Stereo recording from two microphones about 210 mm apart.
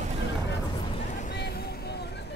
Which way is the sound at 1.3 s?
55° left (ahead or behind).